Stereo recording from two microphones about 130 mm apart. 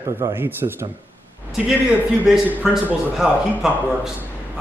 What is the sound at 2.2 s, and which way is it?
A man's voice, centre (ahead or behind).